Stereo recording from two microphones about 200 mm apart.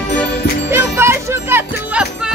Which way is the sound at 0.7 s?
10° right (ahead or behind).